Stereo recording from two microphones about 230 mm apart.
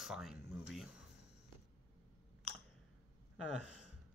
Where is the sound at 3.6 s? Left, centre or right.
Left.